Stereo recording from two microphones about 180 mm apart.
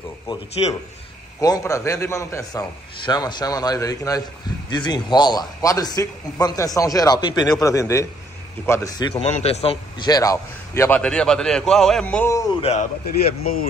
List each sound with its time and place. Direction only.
0.6 s a man's voice: 30° left (ahead or behind)
9.1 s a man's voice: 35° left (ahead or behind)
10.0 s a man's voice: 20° left (ahead or behind)
13.0 s speech: 55° left (ahead or behind)